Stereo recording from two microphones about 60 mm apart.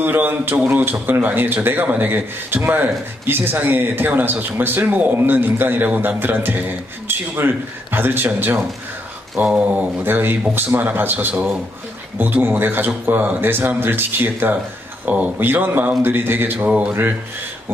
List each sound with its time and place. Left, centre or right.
0.0 s a man's voice: right
9.4 s speech: right
10.0 s a man's voice: right